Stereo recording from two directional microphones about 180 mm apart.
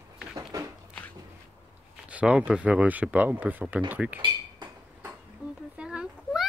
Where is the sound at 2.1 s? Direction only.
5° right (ahead or behind).